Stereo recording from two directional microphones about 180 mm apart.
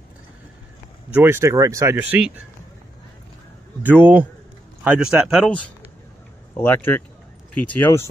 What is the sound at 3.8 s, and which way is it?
Speech, 10° right (ahead or behind).